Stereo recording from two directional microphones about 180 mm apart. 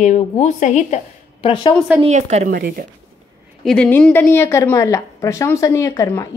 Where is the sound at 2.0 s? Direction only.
40° right (ahead or behind).